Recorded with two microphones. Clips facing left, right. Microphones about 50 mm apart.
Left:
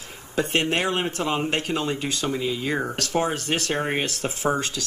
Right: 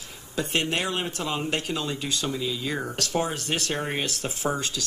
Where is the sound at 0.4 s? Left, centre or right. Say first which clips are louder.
Left 4 dB; left.